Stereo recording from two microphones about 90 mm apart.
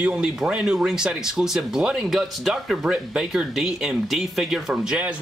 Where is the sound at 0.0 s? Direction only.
10° right (ahead or behind).